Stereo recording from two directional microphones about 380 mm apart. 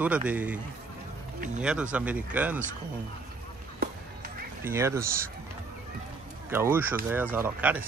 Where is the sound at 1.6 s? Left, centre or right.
Centre.